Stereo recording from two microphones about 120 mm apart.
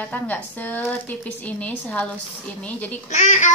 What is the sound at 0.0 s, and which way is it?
A woman's voice, 15° left (ahead or behind).